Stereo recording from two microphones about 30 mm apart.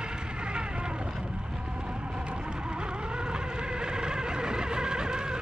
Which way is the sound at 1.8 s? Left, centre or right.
Right.